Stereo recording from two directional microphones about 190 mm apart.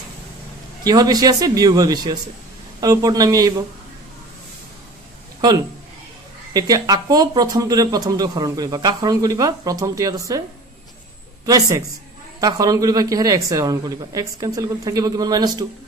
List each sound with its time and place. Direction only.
0.8 s speech: 20° right (ahead or behind)
6.5 s speech: 20° right (ahead or behind)
11.4 s speech: 20° right (ahead or behind)